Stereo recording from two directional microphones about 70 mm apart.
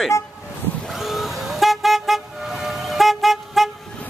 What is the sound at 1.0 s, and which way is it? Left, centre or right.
Vehicle, centre.